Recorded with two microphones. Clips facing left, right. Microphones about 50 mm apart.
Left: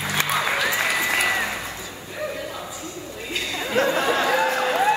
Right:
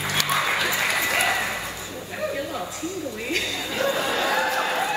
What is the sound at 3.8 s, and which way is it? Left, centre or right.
Chatter, left.